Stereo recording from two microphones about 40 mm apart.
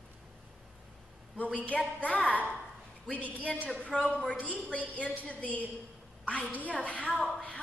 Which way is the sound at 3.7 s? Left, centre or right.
Left.